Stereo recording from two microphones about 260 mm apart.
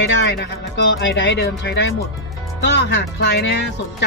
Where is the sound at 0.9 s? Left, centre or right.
Left.